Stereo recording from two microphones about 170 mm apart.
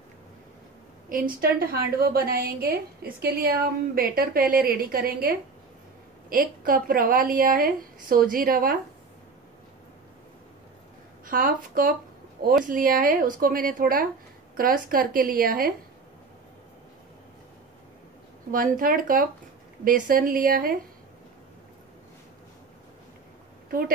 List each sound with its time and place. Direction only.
1.4 s a woman's voice: 60° right (ahead or behind)
6.3 s a woman's voice: 55° right (ahead or behind)
11.2 s a woman's voice: 55° right (ahead or behind)
18.5 s a woman's voice: 55° right (ahead or behind)